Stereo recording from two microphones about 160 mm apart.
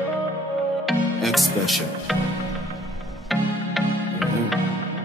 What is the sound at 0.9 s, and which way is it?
Music, centre (ahead or behind).